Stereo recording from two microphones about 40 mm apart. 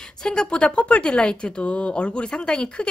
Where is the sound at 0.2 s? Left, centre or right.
Centre.